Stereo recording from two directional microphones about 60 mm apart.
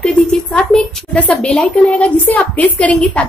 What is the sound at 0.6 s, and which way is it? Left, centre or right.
A woman's voice, centre.